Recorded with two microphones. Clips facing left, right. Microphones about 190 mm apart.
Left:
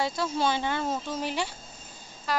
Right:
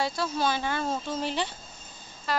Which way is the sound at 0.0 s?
20° left (ahead or behind).